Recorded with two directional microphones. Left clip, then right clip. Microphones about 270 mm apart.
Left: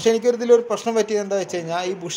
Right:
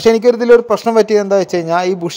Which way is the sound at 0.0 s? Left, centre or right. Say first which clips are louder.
Right 8 dB; right.